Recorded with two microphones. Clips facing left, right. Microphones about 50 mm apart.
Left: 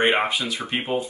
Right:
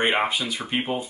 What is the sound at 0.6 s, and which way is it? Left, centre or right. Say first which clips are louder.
Speech: even; centre.